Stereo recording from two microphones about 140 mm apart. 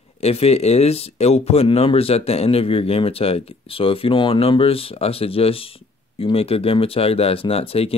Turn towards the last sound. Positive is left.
turn(degrees=45)  # may be behind; listen again after turning